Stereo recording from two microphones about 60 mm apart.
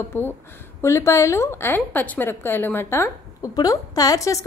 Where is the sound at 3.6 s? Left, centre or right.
Left.